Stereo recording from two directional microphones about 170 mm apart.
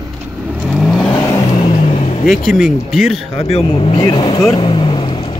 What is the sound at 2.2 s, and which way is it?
Speech, centre (ahead or behind).